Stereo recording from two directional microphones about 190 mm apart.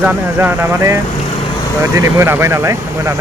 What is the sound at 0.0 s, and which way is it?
Speech, 10° right (ahead or behind).